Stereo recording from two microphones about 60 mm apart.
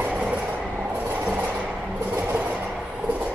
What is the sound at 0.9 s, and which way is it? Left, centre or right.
Train, right.